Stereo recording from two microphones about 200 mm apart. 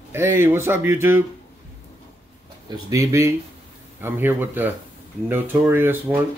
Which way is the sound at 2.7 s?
15° right (ahead or behind).